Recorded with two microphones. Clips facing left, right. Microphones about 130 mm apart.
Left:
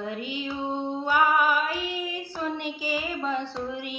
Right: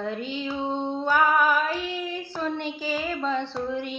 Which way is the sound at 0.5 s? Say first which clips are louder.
Right 2 dB; 20° right (ahead or behind).